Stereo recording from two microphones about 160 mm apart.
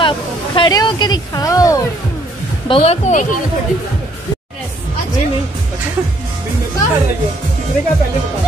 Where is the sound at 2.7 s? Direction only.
35° left (ahead or behind).